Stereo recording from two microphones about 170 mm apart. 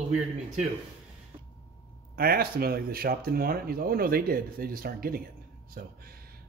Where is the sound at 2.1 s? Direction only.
65° right (ahead or behind).